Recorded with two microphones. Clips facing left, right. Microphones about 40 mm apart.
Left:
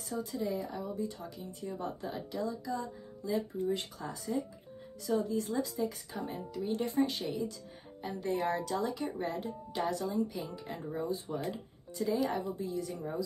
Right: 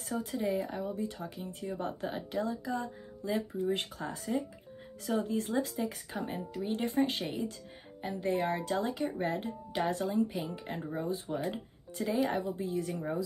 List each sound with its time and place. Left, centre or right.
0.1 s speech: right